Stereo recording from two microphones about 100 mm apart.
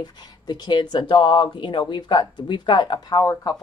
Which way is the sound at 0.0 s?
45° left (ahead or behind).